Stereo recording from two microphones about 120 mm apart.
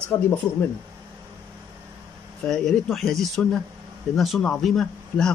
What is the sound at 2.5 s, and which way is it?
A man's voice, 5° left (ahead or behind).